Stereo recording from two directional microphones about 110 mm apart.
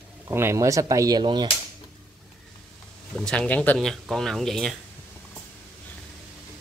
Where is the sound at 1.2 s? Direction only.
45° right (ahead or behind).